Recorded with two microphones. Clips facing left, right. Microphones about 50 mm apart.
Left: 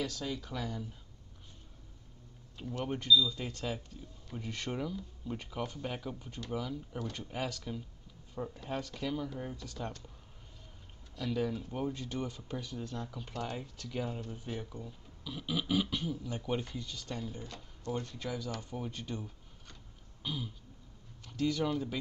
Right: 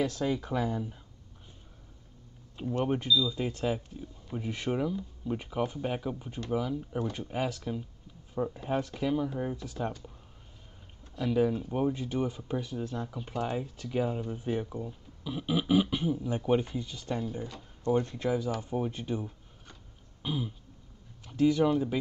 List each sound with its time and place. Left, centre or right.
0.0 s speech: right
2.8 s speech: centre
11.1 s speech: centre
17.8 s speech: right
18.5 s a sound: centre
21.3 s speech: centre